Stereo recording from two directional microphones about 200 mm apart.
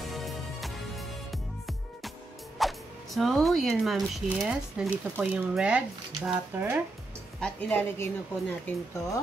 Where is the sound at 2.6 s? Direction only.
Centre (ahead or behind).